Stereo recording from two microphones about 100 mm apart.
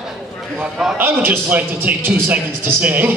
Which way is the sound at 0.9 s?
20° right (ahead or behind).